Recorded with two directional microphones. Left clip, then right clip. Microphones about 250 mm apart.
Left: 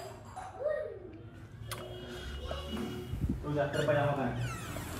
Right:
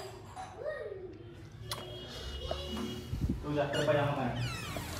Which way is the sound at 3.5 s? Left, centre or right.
Centre.